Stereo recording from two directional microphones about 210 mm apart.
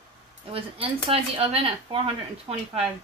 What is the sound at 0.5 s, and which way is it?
Speech, 25° right (ahead or behind).